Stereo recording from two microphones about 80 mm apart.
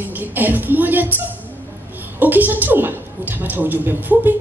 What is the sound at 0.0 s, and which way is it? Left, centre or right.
Speech, right.